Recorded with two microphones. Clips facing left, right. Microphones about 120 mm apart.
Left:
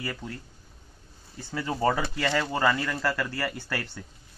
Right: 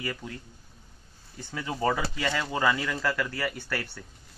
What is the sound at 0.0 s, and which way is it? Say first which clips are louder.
Speech: even; centre (ahead or behind).